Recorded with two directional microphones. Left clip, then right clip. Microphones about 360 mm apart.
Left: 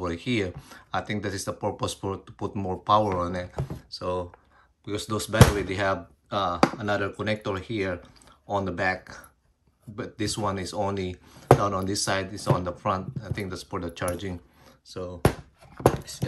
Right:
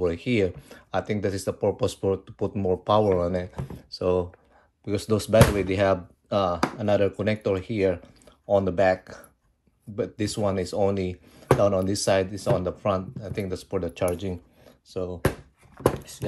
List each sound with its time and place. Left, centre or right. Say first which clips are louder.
0.0 s speech: right 4 dB; centre